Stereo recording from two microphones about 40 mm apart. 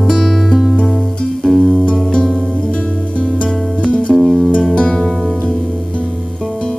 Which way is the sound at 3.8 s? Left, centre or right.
Left.